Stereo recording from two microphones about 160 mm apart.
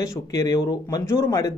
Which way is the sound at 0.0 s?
25° left (ahead or behind).